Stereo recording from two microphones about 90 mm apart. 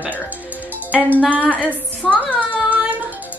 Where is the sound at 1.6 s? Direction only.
15° left (ahead or behind).